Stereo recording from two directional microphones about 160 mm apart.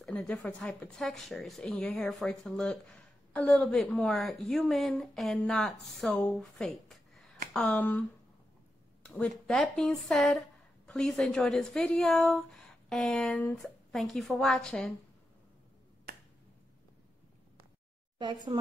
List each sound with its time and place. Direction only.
0.0 s speech: 5° left (ahead or behind)
9.5 s speech: centre (ahead or behind)
18.2 s speech: 30° right (ahead or behind)